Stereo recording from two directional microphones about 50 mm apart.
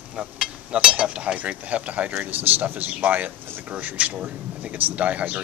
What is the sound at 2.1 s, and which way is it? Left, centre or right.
Speech, right.